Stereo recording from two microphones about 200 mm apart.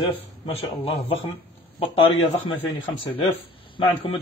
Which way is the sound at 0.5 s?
25° left (ahead or behind).